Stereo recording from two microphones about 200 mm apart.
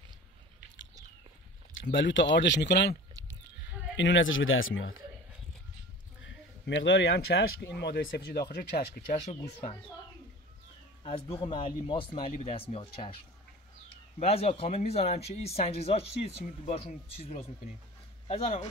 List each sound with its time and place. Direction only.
1.7 s speech: 65° left (ahead or behind); by 5.0 s 85° left
6.2 s speech: 65° left (ahead or behind); by 9.8 s 30° left (ahead or behind)
11.1 s speech: 30° left (ahead or behind)
14.2 s speech: 30° left (ahead or behind)